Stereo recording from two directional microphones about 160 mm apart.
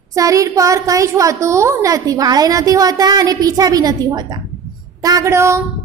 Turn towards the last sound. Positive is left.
turn(degrees=-15)  # may be behind; listen again after turning